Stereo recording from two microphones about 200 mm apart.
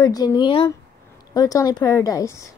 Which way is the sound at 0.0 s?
20° left (ahead or behind).